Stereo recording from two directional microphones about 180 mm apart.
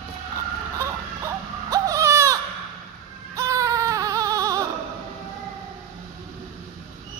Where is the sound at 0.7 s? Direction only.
15° right (ahead or behind).